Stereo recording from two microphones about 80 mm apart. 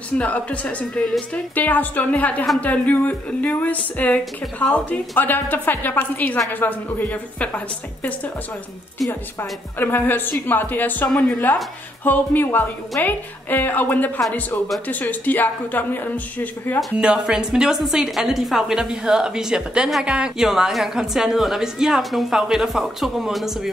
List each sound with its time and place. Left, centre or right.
0.2 s a woman's voice: centre
9.4 s a woman's voice: left
17.0 s a woman's voice: centre